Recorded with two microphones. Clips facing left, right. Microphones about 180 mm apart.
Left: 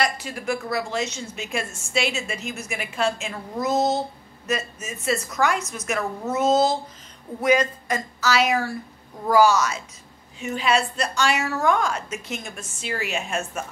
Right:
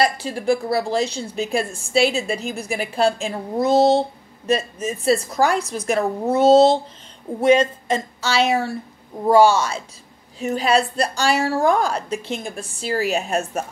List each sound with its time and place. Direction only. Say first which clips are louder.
0.0 s a woman's voice: right 5 dB; 30° right (ahead or behind)